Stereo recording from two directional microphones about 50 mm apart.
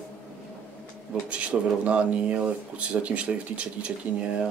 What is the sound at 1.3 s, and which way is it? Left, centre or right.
Speech, right.